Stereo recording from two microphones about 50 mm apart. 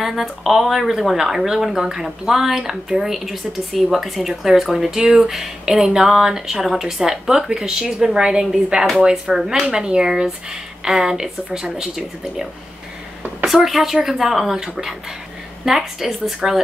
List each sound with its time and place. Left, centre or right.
0.0 s speech: centre
9.1 s speech: centre
13.5 s a woman's voice: centre